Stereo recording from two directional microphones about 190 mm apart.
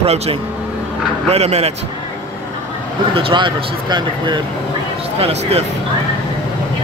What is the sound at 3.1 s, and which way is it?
A man's voice, 25° right (ahead or behind).